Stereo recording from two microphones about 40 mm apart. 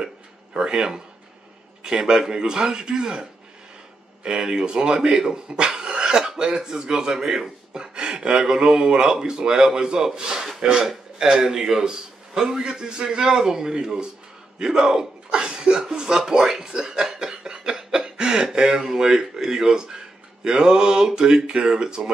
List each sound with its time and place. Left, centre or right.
0.0 s a sound: right
1.8 s speech: right
10.6 s speech: right
11.1 s a man's voice: centre
14.6 s chuckle: centre
18.8 s a man's voice: centre